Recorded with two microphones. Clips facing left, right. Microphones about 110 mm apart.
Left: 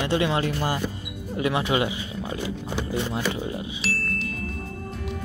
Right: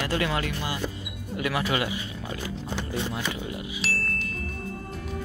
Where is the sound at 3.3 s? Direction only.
30° left (ahead or behind).